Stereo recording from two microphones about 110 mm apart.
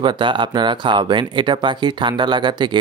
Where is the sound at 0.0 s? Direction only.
45° right (ahead or behind).